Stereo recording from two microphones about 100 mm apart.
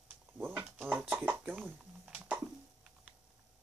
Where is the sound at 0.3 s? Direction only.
20° right (ahead or behind).